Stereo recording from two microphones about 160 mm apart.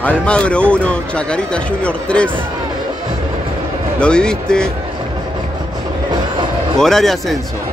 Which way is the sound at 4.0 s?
5° left (ahead or behind).